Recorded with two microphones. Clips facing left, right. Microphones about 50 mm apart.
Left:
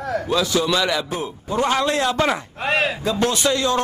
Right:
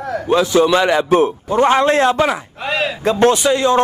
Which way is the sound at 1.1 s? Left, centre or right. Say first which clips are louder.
Right 13 dB; right.